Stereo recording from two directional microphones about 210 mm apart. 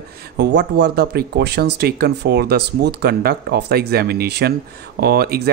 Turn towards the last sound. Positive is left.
turn(degrees=-50)  # may be behind; listen again after turning